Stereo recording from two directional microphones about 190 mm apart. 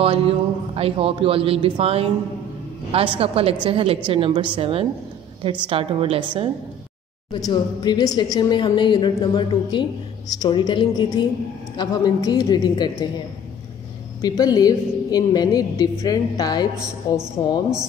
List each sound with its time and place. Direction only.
0.0 s a man's voice: 30° right (ahead or behind)
7.3 s a woman's voice: 20° left (ahead or behind)
14.2 s a woman's voice: 20° left (ahead or behind)